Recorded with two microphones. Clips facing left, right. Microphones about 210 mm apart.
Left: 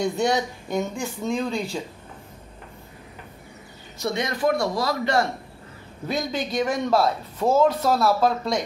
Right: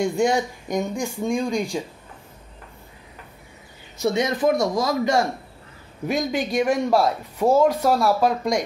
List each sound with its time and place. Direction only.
0.0 s speech: 10° right (ahead or behind)
4.0 s a man's voice: 20° right (ahead or behind)